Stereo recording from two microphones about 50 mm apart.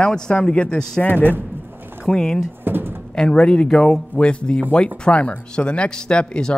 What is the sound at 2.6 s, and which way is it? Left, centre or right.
Pigeon, right.